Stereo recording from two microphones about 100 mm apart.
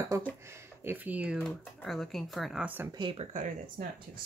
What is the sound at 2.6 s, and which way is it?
Speech, 20° right (ahead or behind).